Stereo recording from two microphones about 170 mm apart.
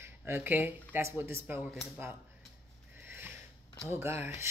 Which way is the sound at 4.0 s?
15° right (ahead or behind).